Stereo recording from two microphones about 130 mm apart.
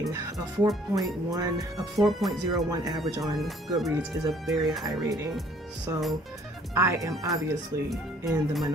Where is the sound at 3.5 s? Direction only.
Centre (ahead or behind).